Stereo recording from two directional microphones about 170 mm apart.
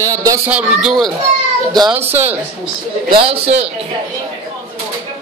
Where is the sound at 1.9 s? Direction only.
10° right (ahead or behind).